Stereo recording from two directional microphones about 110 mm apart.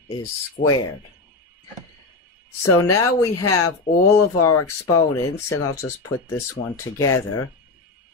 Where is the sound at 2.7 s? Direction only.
25° left (ahead or behind).